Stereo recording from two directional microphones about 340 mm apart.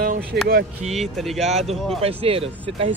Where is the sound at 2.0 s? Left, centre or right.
Centre.